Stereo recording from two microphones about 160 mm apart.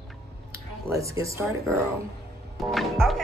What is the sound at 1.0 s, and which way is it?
Speech, 20° right (ahead or behind).